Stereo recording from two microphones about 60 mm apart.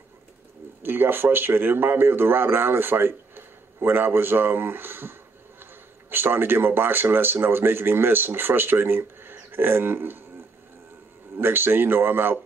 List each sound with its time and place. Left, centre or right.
0.8 s speech: right
11.3 s speech: right